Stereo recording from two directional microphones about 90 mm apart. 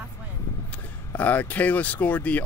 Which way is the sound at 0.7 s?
15° left (ahead or behind).